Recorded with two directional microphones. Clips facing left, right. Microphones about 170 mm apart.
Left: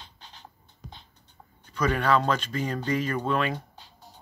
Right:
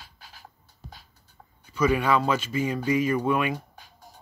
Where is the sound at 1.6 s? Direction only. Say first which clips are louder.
Right 2 dB; 10° right (ahead or behind).